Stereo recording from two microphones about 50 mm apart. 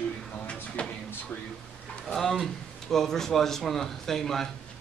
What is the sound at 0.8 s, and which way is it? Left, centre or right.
Drawer open or close, left.